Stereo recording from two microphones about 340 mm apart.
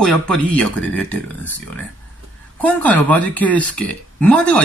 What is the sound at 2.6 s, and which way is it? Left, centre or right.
Speech, centre.